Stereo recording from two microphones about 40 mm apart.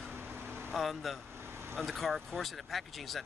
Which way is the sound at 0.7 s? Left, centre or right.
Centre.